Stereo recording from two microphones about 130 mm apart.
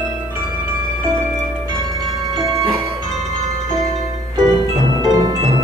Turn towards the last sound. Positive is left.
turn(degrees=-30)  # may be behind; listen again after turning